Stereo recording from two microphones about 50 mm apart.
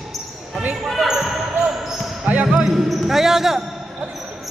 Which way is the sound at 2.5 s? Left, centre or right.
Centre.